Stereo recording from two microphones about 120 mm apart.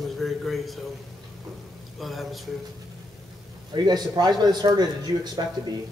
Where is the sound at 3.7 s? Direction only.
35° right (ahead or behind).